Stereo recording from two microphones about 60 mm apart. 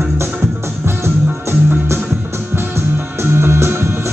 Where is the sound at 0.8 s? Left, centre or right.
Right.